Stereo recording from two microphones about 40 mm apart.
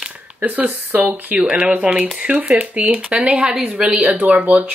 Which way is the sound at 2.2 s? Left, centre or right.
Right.